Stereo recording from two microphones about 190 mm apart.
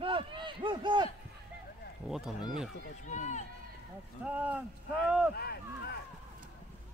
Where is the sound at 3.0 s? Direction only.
40° left (ahead or behind).